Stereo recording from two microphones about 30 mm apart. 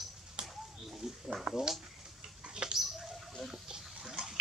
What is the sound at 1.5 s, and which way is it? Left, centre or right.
Bird, centre.